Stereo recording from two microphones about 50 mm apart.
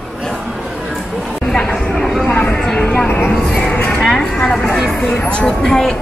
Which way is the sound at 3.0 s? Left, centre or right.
Left.